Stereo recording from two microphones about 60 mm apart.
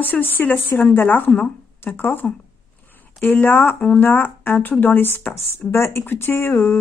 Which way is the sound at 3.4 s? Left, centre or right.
Left.